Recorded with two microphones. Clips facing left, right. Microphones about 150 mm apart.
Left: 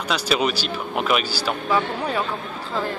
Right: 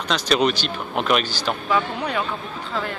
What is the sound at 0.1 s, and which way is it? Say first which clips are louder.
A man's voice: right 2 dB; 5° left (ahead or behind).